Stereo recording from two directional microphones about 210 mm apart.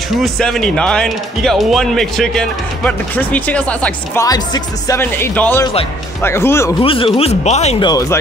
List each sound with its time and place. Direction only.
0.2 s speech: 5° left (ahead or behind)
6.8 s speech: 25° left (ahead or behind)
7.8 s speech: 15° left (ahead or behind)